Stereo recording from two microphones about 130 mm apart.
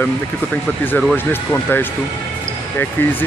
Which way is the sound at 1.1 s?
15° left (ahead or behind).